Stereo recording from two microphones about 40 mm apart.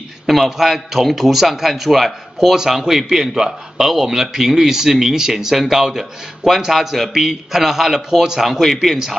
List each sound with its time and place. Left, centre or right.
0.3 s a man's voice: centre
2.5 s a man's voice: centre
8.5 s a man's voice: centre